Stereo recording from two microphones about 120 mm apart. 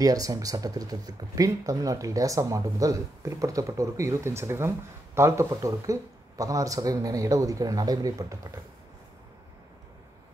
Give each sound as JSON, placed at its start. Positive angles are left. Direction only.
{"t": 0.0, "sound": "speech", "side_deg": -30}